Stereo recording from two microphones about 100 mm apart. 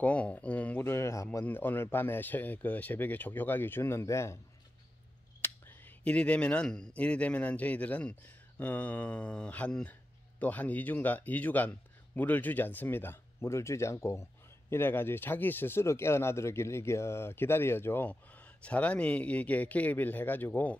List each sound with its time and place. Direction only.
0.0 s speech: 15° left (ahead or behind)
0.9 s speech: 30° left (ahead or behind)
1.4 s speech: 20° left (ahead or behind)
5.4 s a sound: 20° left (ahead or behind)
7.0 s speech: 10° left (ahead or behind)